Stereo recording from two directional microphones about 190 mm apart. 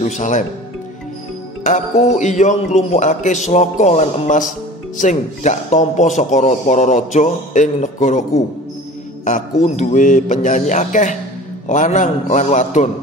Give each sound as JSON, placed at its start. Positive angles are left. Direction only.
{"t": 0.0, "sound": "speech", "side_deg": 40}
{"t": 1.6, "sound": "a man's voice", "side_deg": 40}